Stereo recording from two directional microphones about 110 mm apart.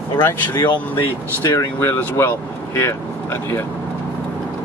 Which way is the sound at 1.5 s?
25° left (ahead or behind).